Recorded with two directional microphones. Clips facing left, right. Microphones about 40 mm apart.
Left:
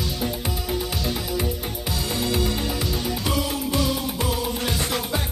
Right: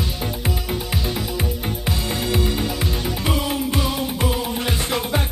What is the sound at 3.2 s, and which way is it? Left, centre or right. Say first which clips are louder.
Music: right 4 dB; right.